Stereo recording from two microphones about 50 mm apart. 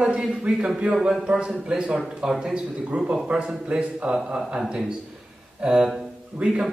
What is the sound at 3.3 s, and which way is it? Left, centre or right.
Speech, right.